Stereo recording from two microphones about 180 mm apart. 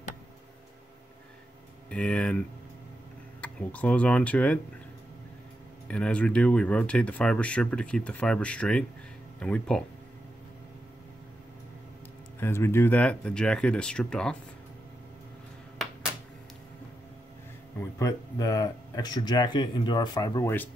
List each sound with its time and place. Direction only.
1.9 s speech: 5° left (ahead or behind)
5.9 s speech: 5° left (ahead or behind)
12.4 s speech: 15° left (ahead or behind)
17.7 s speech: 15° left (ahead or behind)